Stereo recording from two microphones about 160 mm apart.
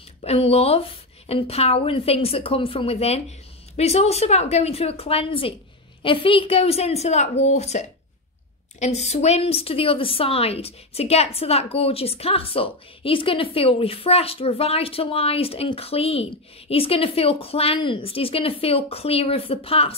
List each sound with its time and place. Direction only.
0.2 s a woman's voice: 40° left (ahead or behind)